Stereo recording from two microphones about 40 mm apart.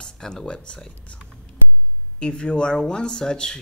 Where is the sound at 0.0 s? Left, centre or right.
Centre.